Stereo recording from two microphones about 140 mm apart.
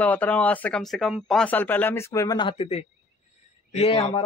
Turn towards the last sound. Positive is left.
turn(degrees=40)  # may be behind; listen again after turning